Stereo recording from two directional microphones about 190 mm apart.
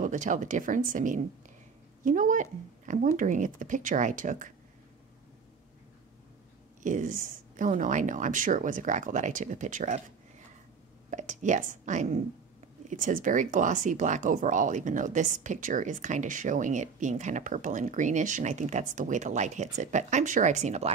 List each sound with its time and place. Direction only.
0.0 s speech: 40° right (ahead or behind)
6.8 s speech: 45° right (ahead or behind)
11.1 s speech: 40° right (ahead or behind)